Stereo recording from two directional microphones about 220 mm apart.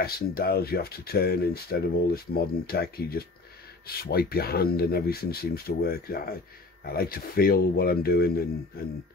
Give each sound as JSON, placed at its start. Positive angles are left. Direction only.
{"t": 0.0, "sound": "speech", "side_deg": 45}